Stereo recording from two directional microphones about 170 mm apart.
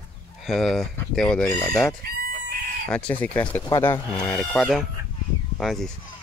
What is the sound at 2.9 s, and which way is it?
Speech, 5° left (ahead or behind).